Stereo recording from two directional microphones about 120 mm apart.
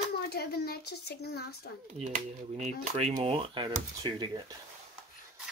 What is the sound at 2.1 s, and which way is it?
Speech, 70° right (ahead or behind).